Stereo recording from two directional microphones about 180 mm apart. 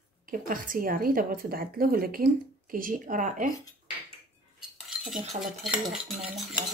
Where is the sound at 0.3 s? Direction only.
50° right (ahead or behind).